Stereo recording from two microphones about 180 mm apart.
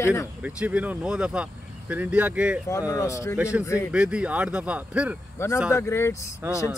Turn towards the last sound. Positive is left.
turn(degrees=-10)  # may be behind; listen again after turning